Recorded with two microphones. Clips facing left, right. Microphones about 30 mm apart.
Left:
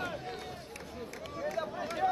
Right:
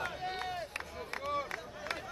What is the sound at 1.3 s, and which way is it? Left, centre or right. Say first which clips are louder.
Run: left 3 dB; right.